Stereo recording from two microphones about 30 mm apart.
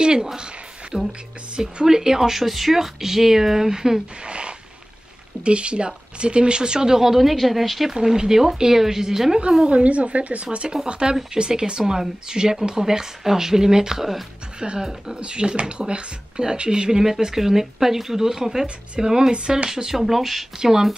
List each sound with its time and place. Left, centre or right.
0.9 s speech: centre
4.2 s speech: right
7.1 s a woman's voice: centre
7.9 s speech: centre
9.7 s speech: right; by 14.0 s centre
14.6 s speech: right; by 20.4 s centre
20.5 s speech: centre